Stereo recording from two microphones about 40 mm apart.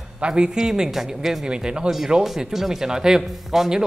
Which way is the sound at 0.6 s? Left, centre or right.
Centre.